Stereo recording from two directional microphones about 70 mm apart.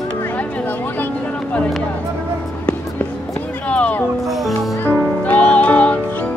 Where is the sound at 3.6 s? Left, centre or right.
Centre.